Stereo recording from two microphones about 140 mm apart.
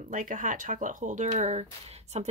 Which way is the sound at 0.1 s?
70° right (ahead or behind).